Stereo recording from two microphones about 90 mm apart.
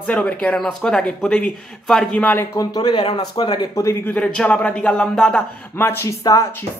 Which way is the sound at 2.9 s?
70° left (ahead or behind).